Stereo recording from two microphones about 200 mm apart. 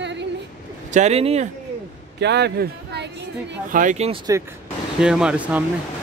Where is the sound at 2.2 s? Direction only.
55° right (ahead or behind).